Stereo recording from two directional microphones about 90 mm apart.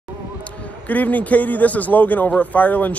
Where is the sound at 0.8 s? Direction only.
20° left (ahead or behind).